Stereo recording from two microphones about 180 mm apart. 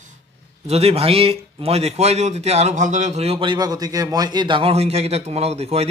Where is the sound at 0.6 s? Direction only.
35° right (ahead or behind).